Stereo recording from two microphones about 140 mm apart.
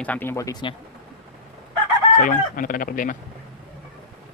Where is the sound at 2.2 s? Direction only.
75° left (ahead or behind).